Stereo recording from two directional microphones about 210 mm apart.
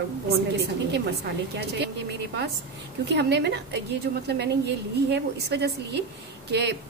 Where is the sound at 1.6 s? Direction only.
55° right (ahead or behind).